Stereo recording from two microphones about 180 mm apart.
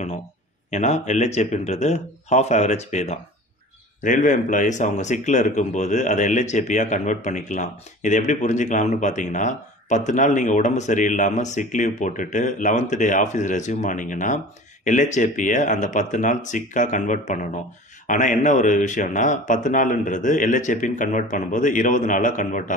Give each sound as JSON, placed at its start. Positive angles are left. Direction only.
{"t": 0.7, "sound": "speech", "side_deg": 40}